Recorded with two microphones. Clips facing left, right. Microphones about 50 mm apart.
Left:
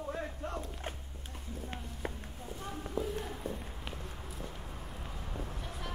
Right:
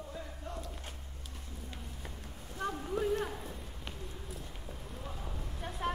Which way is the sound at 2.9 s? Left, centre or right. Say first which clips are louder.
Right 4 dB; right.